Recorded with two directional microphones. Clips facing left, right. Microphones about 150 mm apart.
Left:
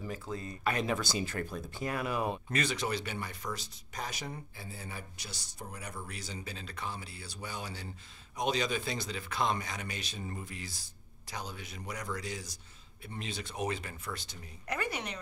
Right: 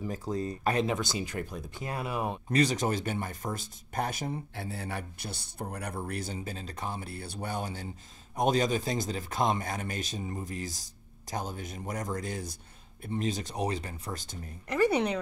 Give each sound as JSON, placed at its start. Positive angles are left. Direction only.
{"t": 0.1, "sound": "speech", "side_deg": -40}
{"t": 0.8, "sound": "speech", "side_deg": -20}
{"t": 2.6, "sound": "speech", "side_deg": -45}
{"t": 4.6, "sound": "speech", "side_deg": -70}
{"t": 6.4, "sound": "speech", "side_deg": -40}
{"t": 13.2, "sound": "speech", "side_deg": -40}